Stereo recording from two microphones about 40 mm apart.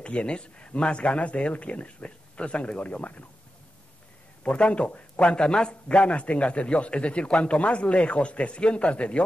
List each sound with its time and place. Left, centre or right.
0.0 s a man's voice: left
4.4 s a man's voice: left